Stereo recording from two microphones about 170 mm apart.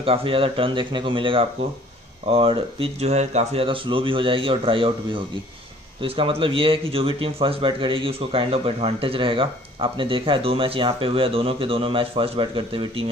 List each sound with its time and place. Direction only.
0.0 s a man's voice: 35° right (ahead or behind)